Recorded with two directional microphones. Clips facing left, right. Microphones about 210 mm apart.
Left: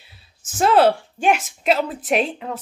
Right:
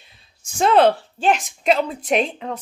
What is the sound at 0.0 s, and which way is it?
Speech, 5° left (ahead or behind).